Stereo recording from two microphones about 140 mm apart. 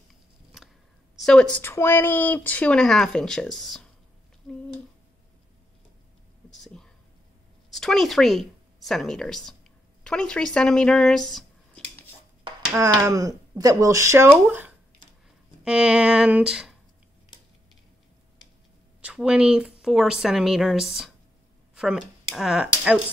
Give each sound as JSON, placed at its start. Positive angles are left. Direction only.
{"t": 0.1, "sound": "a sound", "side_deg": 0}
{"t": 1.1, "sound": "a woman's voice", "side_deg": 5}
{"t": 1.6, "sound": "speech", "side_deg": 15}
{"t": 6.5, "sound": "whispering", "side_deg": 5}
{"t": 7.7, "sound": "speech", "side_deg": 0}
{"t": 12.7, "sound": "speech", "side_deg": -20}
{"t": 18.9, "sound": "speech", "side_deg": -5}